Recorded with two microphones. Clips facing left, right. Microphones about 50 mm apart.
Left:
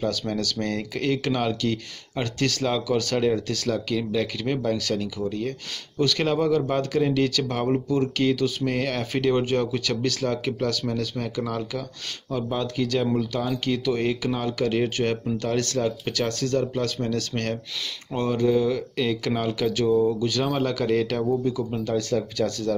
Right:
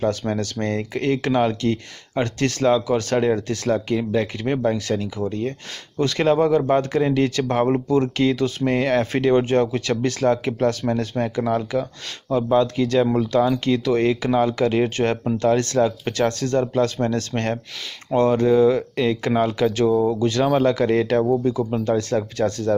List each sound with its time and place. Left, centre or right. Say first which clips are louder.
0.0 s speech: right 4 dB; right
18.1 s speech: right 6 dB; right